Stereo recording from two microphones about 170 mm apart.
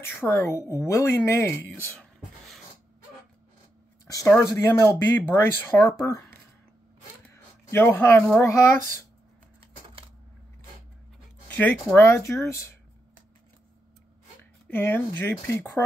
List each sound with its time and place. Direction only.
0.0 s a woman's voice: 15° left (ahead or behind)
4.4 s a woman's voice: 20° left (ahead or behind)
7.7 s a woman's voice: 10° left (ahead or behind)
11.4 s a sound: 10° left (ahead or behind)
11.9 s a woman's voice: 15° left (ahead or behind)
14.7 s a woman's voice: 10° left (ahead or behind)